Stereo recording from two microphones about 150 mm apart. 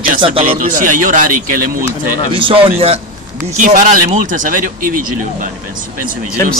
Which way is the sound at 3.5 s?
60° right (ahead or behind).